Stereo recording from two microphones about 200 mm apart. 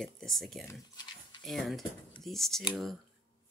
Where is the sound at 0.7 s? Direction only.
20° left (ahead or behind).